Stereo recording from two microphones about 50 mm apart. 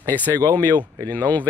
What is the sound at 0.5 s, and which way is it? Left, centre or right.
Speech, left.